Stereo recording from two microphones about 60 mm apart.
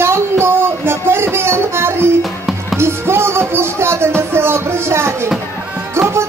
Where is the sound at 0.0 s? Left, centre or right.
Right.